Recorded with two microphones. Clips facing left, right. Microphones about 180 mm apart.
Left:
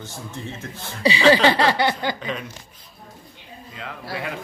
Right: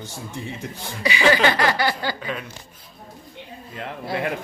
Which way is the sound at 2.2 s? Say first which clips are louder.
Left 1 dB; 5° right (ahead or behind).